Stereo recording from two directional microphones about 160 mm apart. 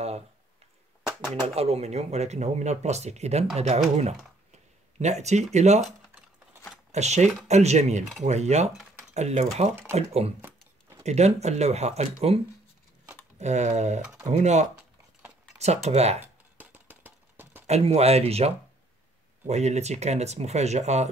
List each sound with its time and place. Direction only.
1.5 s speech: 40° right (ahead or behind)
6.9 s speech: 45° right (ahead or behind)
13.4 s speech: 45° right (ahead or behind)
16.5 s a sound: 10° right (ahead or behind)
17.6 s speech: 40° right (ahead or behind)